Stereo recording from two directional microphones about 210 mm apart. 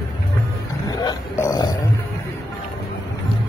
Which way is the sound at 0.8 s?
15° left (ahead or behind).